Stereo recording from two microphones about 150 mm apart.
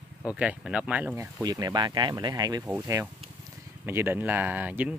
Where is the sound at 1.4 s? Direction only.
25° right (ahead or behind).